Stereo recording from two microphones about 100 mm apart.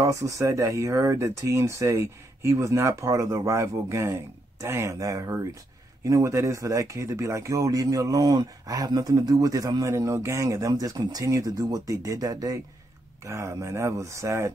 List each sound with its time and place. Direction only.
0.0 s speech: 35° right (ahead or behind)